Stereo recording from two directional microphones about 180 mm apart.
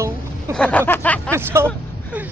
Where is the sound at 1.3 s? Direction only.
15° right (ahead or behind).